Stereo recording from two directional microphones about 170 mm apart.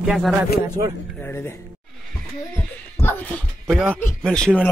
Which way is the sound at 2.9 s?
10° left (ahead or behind).